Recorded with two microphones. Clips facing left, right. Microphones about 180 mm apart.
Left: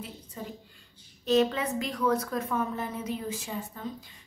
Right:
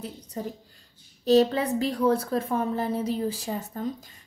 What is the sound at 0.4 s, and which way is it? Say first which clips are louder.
A woman's voice: right 7 dB; 40° right (ahead or behind).